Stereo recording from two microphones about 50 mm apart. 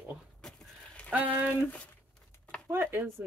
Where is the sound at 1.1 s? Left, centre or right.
Right.